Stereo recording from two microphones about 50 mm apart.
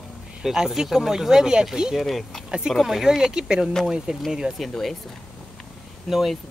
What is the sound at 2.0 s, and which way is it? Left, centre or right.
Speech, centre.